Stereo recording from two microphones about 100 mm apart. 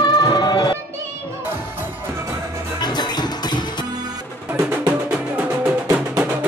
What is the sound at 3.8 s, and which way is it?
Music, 45° right (ahead or behind).